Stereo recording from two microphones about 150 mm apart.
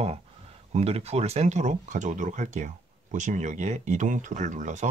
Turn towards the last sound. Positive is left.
turn(degrees=-55)  # may be behind; listen again after turning